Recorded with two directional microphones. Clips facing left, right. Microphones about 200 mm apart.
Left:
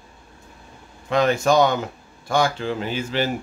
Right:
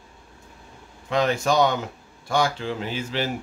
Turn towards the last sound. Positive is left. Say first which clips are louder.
# left 3 dB
turn(degrees=55)  # may be behind; listen again after turning